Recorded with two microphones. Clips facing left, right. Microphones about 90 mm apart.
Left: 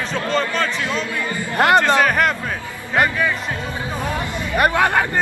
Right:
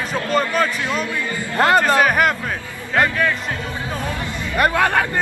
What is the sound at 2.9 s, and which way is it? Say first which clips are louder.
Speech: even; 10° left (ahead or behind).